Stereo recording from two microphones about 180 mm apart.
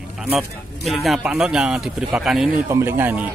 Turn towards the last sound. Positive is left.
turn(degrees=-10)  # may be behind; listen again after turning